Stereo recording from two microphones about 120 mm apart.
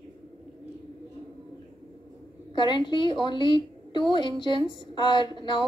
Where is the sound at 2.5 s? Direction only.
40° left (ahead or behind).